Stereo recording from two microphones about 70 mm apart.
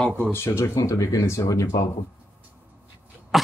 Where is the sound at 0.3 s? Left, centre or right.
Left.